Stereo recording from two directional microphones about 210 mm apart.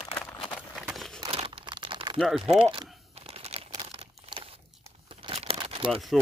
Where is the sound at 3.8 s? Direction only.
25° right (ahead or behind).